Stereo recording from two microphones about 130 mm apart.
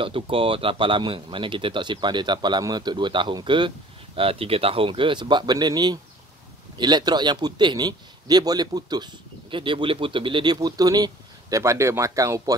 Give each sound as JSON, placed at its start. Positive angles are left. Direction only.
{"t": 0.0, "sound": "speech", "side_deg": -45}